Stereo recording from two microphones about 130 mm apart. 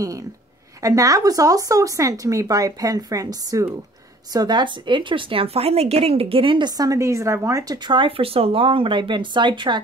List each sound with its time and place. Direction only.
0.8 s speech: 25° right (ahead or behind); by 6.7 s 40° right (ahead or behind)
6.8 s speech: 25° right (ahead or behind)